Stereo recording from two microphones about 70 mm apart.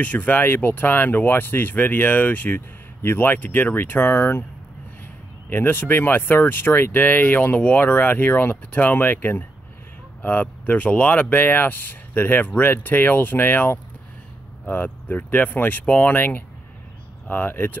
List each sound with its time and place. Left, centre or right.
0.0 s speech: left
5.5 s speech: left